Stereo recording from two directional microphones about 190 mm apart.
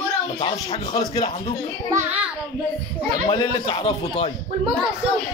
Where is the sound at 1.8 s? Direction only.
10° right (ahead or behind).